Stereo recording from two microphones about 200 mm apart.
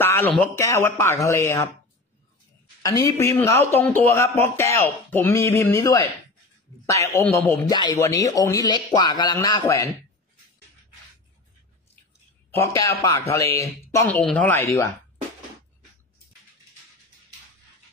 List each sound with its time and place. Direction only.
0.0 s a man's voice: 10° left (ahead or behind)
2.8 s a man's voice: 15° left (ahead or behind)
12.4 s a man's voice: 10° left (ahead or behind)